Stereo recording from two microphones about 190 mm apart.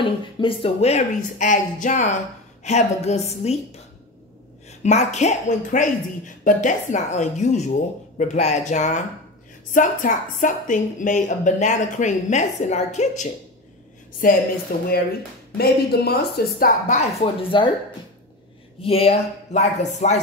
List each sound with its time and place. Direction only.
0.0 s a woman's voice: 25° left (ahead or behind)
14.7 s speech: 50° left (ahead or behind); by 17.6 s 25° left (ahead or behind)
18.8 s a woman's voice: 30° left (ahead or behind)